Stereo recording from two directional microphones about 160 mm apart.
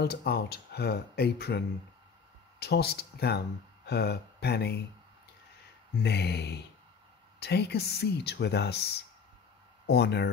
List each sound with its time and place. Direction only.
0.0 s speech: 90° left
2.6 s speech: 85° left
6.0 s speech: 90° left
9.8 s speech: 90° left